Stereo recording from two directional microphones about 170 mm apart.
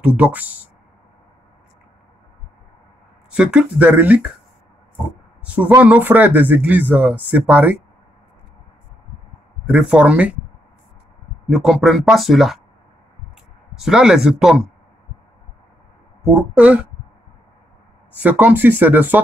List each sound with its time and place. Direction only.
0.0 s speech: 10° right (ahead or behind)
3.3 s speech: 5° right (ahead or behind)
5.5 s speech: 10° right (ahead or behind)
9.7 s speech: 5° right (ahead or behind)
11.4 s speech: 5° right (ahead or behind)
13.7 s speech: 5° right (ahead or behind)
16.3 s speech: 10° right (ahead or behind)
18.2 s speech: 10° right (ahead or behind)